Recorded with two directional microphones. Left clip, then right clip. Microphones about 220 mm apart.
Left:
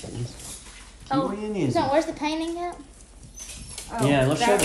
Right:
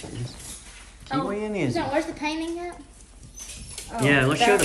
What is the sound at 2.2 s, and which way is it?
Speech, 45° left (ahead or behind).